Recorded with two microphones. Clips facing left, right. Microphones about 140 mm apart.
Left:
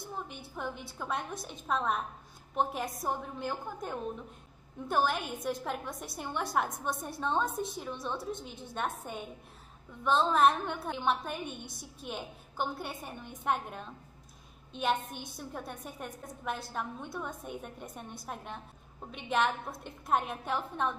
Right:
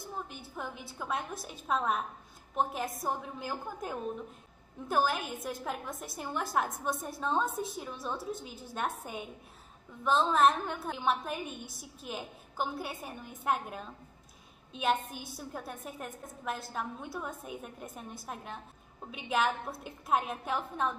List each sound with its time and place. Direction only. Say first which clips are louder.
0.0 s a woman's voice: even; centre (ahead or behind)